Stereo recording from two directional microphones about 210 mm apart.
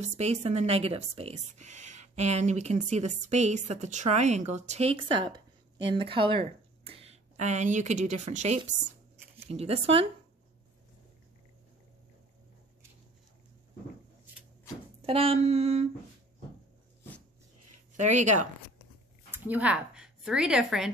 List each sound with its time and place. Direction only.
0.0 s speech: 30° right (ahead or behind)
15.0 s speech: 25° right (ahead or behind)
17.9 s speech: 35° right (ahead or behind)
19.3 s speech: 10° right (ahead or behind)